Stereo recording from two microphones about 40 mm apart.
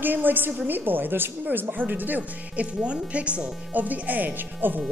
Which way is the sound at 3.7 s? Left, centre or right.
Right.